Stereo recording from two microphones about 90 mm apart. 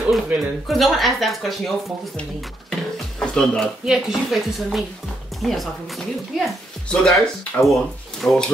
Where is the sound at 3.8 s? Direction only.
5° right (ahead or behind).